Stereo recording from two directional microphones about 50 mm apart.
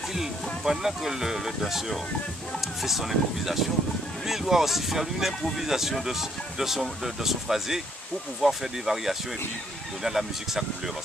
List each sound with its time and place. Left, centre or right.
0.1 s speech: centre